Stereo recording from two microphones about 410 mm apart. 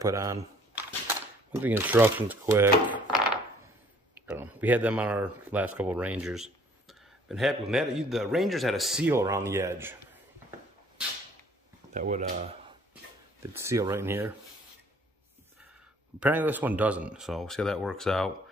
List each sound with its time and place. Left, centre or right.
0.0 s speech: centre
4.4 s speech: centre
11.9 s speech: centre
16.2 s speech: centre